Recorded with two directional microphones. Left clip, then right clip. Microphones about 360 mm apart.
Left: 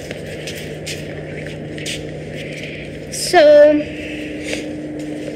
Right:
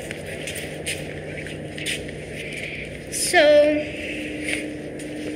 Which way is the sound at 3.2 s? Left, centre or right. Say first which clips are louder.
Left 7 dB; left.